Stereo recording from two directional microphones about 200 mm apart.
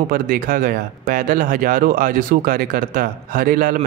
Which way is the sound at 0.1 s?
45° right (ahead or behind).